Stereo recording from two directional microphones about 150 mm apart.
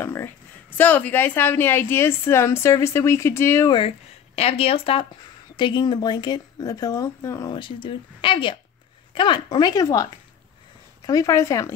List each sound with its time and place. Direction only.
0.0 s a woman's voice: 15° left (ahead or behind)
4.4 s speech: 40° left (ahead or behind); by 10.0 s 25° left (ahead or behind)
11.1 s speech: 20° left (ahead or behind)